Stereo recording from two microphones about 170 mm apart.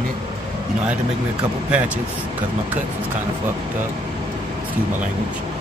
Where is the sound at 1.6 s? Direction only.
5° right (ahead or behind).